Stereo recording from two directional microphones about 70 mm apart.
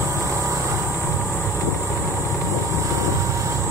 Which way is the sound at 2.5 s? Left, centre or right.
Right.